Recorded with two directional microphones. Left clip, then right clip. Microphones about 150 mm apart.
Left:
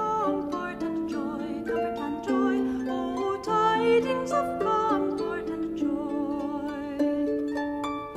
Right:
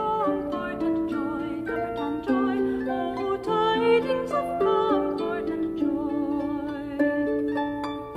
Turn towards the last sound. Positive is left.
turn(degrees=-20)  # may be behind; listen again after turning